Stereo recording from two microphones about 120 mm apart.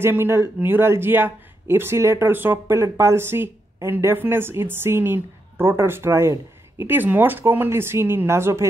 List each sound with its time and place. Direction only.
0.0 s speech: 20° right (ahead or behind)